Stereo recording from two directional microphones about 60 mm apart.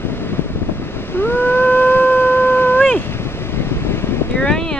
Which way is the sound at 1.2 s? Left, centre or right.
Left.